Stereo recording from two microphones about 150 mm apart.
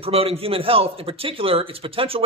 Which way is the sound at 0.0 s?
40° right (ahead or behind).